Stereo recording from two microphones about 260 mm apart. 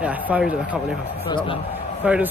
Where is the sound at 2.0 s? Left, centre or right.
Centre.